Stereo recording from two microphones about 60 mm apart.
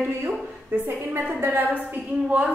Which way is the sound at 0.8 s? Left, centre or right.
Right.